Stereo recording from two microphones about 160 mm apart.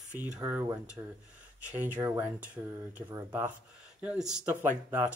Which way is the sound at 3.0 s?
30° right (ahead or behind).